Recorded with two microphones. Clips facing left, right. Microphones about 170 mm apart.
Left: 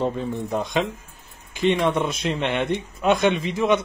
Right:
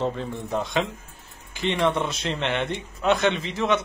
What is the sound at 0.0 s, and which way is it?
A man's voice, 15° left (ahead or behind).